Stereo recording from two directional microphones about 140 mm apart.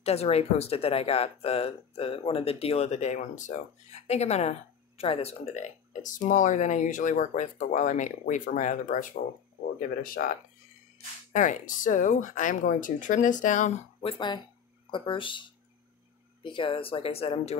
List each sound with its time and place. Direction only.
0.0 s speech: 45° left (ahead or behind); by 9.2 s 70° left (ahead or behind)
10.0 s speech: 85° left
11.3 s speech: 65° left (ahead or behind)
14.0 s speech: 35° left (ahead or behind)
16.4 s speech: 35° left (ahead or behind)